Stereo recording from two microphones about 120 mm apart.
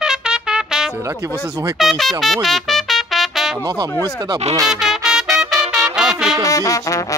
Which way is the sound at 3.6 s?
30° right (ahead or behind).